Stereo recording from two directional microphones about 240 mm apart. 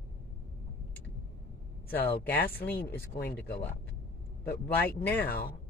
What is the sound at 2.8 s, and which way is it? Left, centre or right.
Speech, left.